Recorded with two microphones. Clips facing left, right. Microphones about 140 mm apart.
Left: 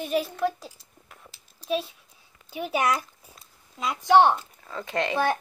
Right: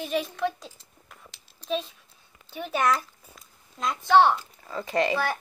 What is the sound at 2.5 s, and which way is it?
A child's voice, 10° left (ahead or behind).